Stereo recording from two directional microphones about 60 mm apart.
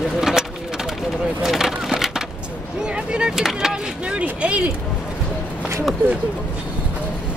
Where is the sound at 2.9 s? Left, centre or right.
Centre.